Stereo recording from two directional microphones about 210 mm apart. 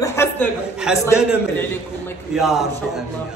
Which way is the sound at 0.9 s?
5° right (ahead or behind).